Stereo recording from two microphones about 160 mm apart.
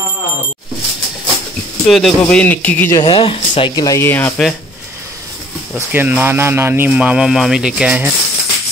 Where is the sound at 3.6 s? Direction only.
25° left (ahead or behind).